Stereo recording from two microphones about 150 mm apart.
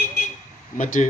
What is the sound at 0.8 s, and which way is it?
Speech, 55° left (ahead or behind).